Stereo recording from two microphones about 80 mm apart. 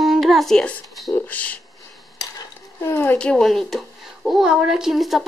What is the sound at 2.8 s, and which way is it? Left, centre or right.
Speech, left.